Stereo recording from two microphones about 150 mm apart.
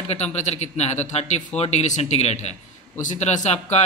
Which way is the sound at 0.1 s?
45° left (ahead or behind).